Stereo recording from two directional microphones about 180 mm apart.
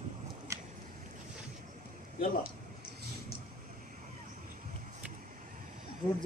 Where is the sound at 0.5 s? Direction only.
15° right (ahead or behind).